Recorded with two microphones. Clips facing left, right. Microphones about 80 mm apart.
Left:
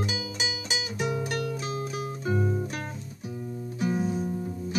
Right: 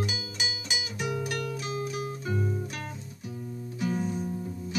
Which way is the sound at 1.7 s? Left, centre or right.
Left.